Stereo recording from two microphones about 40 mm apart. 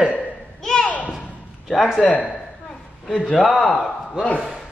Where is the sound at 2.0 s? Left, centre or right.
Left.